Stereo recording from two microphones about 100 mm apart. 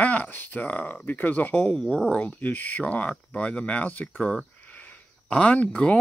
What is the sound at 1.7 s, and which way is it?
Speech, 5° left (ahead or behind).